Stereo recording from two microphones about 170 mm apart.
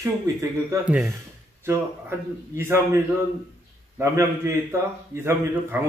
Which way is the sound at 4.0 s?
15° right (ahead or behind).